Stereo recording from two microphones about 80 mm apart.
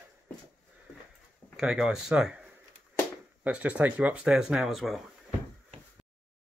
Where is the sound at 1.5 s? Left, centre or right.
Centre.